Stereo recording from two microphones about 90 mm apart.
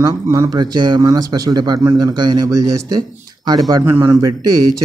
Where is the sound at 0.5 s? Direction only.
55° right (ahead or behind).